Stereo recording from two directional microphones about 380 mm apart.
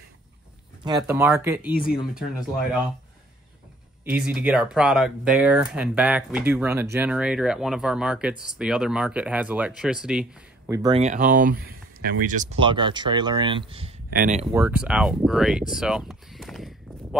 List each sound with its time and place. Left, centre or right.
0.8 s speech: centre
4.0 s speech: centre
14.5 s speech: centre